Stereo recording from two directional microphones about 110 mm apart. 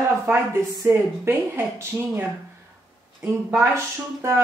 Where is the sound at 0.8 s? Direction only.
20° right (ahead or behind).